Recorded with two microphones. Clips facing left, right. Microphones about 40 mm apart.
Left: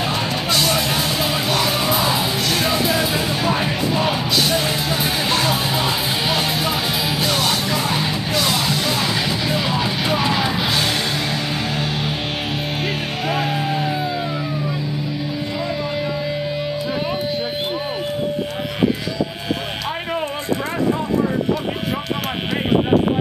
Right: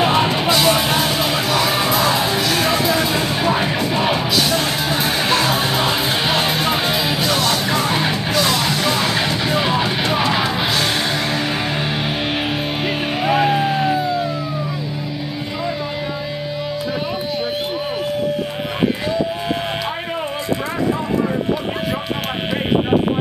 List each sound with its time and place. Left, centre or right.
0.0 s music: right
0.5 s music: centre
4.4 s music: centre
4.8 s music: centre
7.2 s music: centre
7.7 s music: centre
12.8 s music: centre